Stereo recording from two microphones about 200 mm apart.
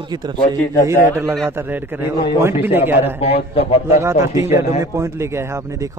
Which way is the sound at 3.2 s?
30° left (ahead or behind).